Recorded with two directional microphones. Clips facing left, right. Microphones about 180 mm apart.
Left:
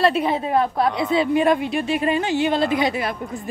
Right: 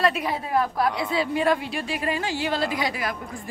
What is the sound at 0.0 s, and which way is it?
A woman's voice, 25° left (ahead or behind).